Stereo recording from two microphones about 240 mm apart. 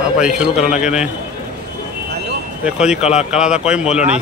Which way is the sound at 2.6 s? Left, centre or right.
Centre.